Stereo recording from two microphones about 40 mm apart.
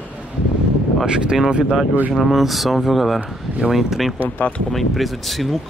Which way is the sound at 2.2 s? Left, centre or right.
Centre.